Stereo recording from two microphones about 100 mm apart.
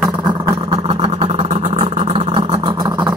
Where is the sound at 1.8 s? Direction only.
80° right.